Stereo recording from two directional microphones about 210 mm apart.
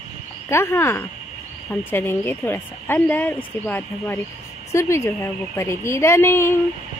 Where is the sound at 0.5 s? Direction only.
10° left (ahead or behind).